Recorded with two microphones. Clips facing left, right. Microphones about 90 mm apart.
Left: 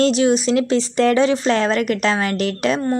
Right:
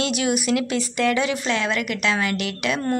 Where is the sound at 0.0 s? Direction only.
30° left (ahead or behind).